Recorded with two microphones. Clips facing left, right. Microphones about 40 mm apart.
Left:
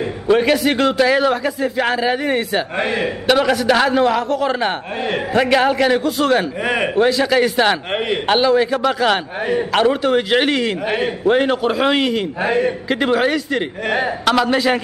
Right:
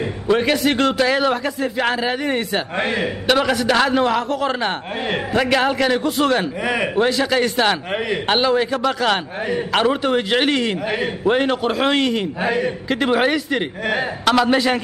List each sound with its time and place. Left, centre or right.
0.0 s a man's voice: centre
6.6 s a man's voice: centre
7.0 s a man's voice: centre
7.9 s a man's voice: left
8.3 s a man's voice: centre
12.4 s a man's voice: left
12.8 s a man's voice: centre
13.1 s a man's voice: centre